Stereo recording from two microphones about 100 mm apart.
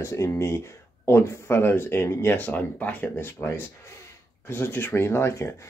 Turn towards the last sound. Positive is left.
turn(degrees=25)  # may be behind; listen again after turning